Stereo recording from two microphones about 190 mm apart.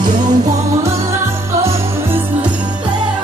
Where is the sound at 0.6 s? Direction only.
15° right (ahead or behind).